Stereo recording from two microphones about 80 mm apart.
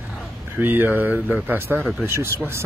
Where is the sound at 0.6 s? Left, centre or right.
Right.